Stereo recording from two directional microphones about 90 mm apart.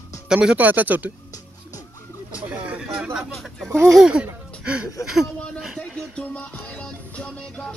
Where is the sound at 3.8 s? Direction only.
5° right (ahead or behind).